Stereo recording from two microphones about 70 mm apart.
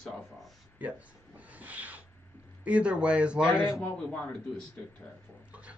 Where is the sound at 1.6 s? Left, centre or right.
Right.